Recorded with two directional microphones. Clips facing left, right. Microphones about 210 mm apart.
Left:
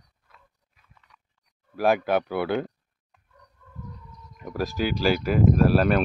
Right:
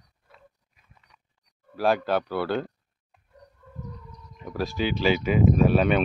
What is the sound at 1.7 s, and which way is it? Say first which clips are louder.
Speech: left 1 dB; 10° left (ahead or behind).